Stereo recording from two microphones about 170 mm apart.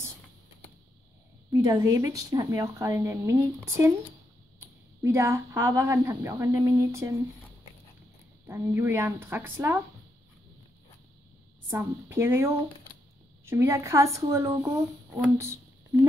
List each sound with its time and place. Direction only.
1.5 s speech: 20° right (ahead or behind)
8.5 s speech: 15° right (ahead or behind)
11.7 s speech: 15° right (ahead or behind)
15.3 s a sound: 15° right (ahead or behind)